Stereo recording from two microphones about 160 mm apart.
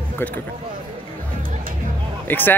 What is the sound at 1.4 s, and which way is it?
Music, 60° right (ahead or behind).